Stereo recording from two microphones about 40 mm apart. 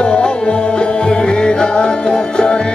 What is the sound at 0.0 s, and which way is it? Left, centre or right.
Music, left.